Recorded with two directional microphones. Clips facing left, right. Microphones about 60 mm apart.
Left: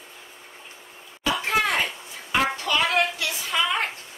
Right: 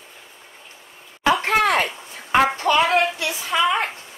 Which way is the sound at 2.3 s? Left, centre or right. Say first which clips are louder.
Right 6 dB; right.